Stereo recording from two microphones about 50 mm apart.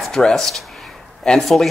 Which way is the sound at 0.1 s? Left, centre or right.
Centre.